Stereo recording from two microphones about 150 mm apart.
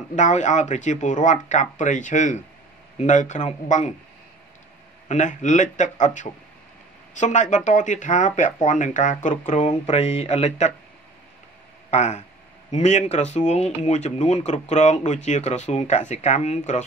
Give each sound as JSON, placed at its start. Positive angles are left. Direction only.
{"t": 0.1, "sound": "speech", "side_deg": 55}
{"t": 5.0, "sound": "speech", "side_deg": 55}
{"t": 11.9, "sound": "speech", "side_deg": 50}